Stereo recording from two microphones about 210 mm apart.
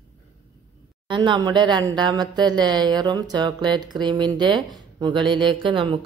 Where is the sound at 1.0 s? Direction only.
20° right (ahead or behind).